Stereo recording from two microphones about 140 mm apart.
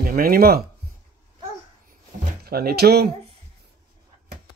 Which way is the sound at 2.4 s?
90° right.